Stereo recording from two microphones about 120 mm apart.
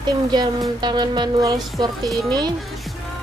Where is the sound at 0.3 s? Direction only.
35° right (ahead or behind).